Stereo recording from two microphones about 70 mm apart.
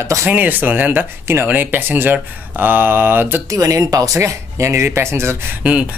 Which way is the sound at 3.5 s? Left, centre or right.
Right.